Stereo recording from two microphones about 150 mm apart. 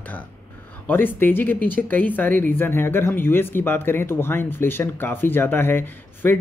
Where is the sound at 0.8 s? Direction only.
15° left (ahead or behind).